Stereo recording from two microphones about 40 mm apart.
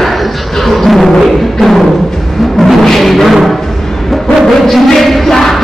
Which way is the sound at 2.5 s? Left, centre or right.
Centre.